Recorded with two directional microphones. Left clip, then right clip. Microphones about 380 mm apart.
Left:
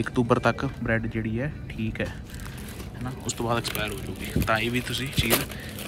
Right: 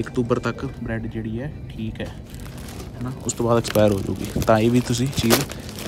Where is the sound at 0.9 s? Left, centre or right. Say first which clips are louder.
Left 1 dB; right.